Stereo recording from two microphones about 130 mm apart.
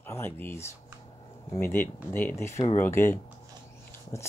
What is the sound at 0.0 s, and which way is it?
Speech, 15° left (ahead or behind).